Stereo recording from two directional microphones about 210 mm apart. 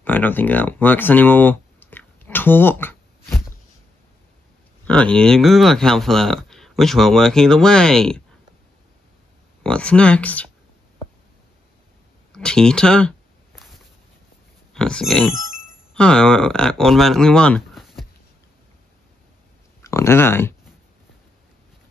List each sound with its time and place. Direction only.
0.0 s a sound: 10° left (ahead or behind)
4.8 s speech: 5° left (ahead or behind)
9.6 s speech: 5° left (ahead or behind)
12.3 s speech: 5° left (ahead or behind)
14.7 s speech: 5° left (ahead or behind)
19.8 s speech: 15° left (ahead or behind)